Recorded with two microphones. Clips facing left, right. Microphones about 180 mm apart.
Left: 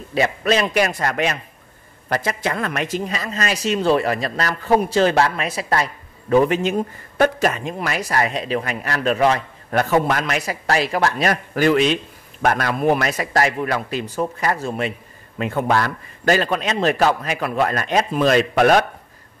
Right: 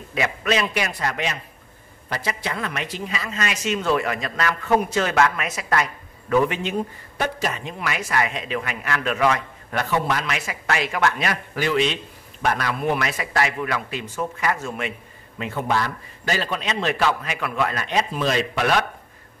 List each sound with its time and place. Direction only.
0.1 s a man's voice: 35° left (ahead or behind)
15.3 s a man's voice: 50° left (ahead or behind)